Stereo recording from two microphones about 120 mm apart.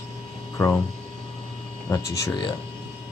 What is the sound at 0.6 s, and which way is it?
Speech, 15° left (ahead or behind).